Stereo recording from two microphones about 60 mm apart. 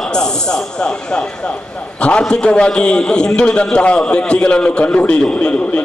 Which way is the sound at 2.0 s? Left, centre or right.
Centre.